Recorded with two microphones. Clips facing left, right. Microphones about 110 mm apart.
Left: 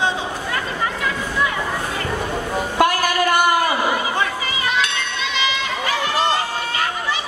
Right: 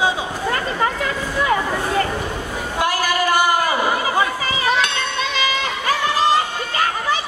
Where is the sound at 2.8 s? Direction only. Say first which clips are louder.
Left 4 dB; 55° left (ahead or behind).